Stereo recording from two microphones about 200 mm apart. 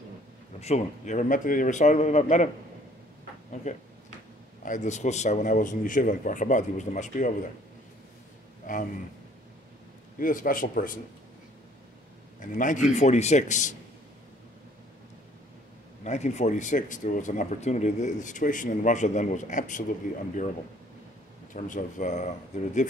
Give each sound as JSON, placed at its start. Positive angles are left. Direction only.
{"t": 0.6, "sound": "speech", "side_deg": 35}
{"t": 4.6, "sound": "speech", "side_deg": 35}
{"t": 8.6, "sound": "a man's voice", "side_deg": 40}
{"t": 10.1, "sound": "speech", "side_deg": 45}
{"t": 12.4, "sound": "speech", "side_deg": 40}
{"t": 16.0, "sound": "speech", "side_deg": 35}
{"t": 21.5, "sound": "speech", "side_deg": 40}